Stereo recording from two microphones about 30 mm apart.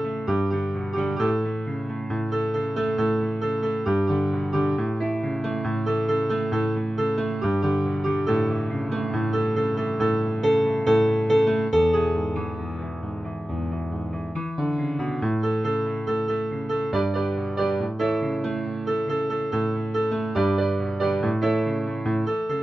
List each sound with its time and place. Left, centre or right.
0.3 s music: centre
15.2 s music: centre